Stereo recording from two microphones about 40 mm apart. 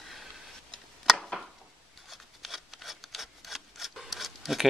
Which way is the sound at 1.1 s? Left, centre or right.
Centre.